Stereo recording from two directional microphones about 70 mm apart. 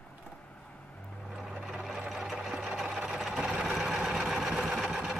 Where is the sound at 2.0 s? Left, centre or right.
Centre.